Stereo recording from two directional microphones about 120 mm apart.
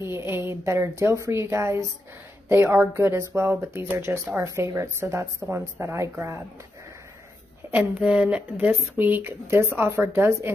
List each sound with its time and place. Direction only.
0.0 s a woman's voice: 20° right (ahead or behind)
7.7 s speech: 10° right (ahead or behind)